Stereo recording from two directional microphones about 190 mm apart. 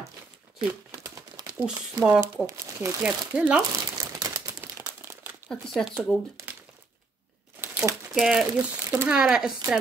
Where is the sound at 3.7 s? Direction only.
20° right (ahead or behind).